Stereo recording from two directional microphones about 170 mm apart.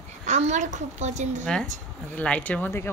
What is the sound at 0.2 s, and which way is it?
A child's voice, 45° right (ahead or behind).